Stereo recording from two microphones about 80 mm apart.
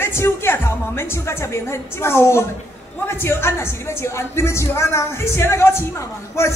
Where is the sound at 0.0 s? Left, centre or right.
Left.